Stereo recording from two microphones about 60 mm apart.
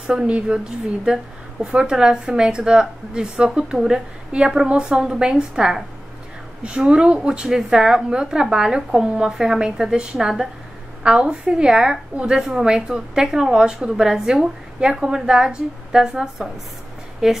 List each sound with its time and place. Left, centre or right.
0.0 s a woman's voice: centre